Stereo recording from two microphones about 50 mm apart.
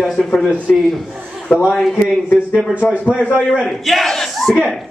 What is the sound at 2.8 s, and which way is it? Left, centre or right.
Speech, left.